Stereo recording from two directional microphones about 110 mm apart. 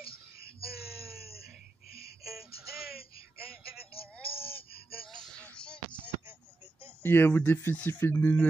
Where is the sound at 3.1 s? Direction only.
60° left (ahead or behind).